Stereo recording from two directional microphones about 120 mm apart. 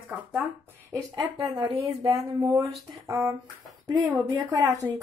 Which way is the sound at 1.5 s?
45° right (ahead or behind).